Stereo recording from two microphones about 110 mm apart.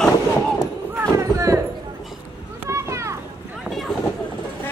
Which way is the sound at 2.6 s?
25° right (ahead or behind).